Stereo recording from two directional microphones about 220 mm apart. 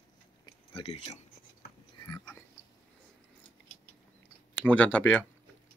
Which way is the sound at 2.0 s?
15° left (ahead or behind).